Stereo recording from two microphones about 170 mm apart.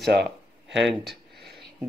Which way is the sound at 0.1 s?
75° right (ahead or behind).